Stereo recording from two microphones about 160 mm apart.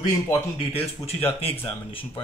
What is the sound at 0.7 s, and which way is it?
Speech, 40° left (ahead or behind).